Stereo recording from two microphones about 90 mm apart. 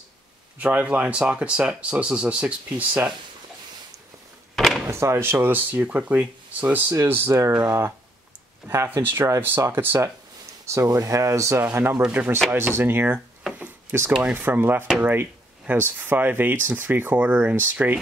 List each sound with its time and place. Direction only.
0.6 s speech: 15° right (ahead or behind)
4.6 s a sound: centre (ahead or behind)
4.8 s speech: 30° right (ahead or behind)
10.7 s speech: 35° right (ahead or behind)
11.6 s speech: 20° right (ahead or behind)